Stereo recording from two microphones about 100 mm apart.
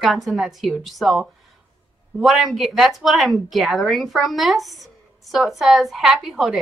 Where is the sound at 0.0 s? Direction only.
Centre (ahead or behind).